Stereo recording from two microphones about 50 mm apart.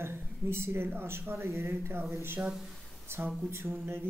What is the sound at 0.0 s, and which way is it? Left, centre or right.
Speech, right.